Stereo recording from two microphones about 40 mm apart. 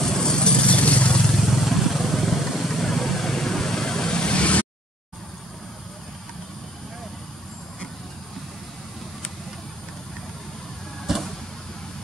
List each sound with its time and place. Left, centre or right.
0.0 s vehicle: centre; by 1.2 s left
1.4 s vehicle: centre; by 4.6 s left
11.1 s vehicle: centre